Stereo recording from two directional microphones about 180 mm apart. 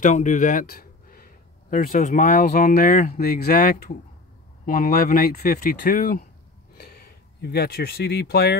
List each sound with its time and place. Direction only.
0.0 s speech: 45° left (ahead or behind)
7.4 s speech: 60° left (ahead or behind)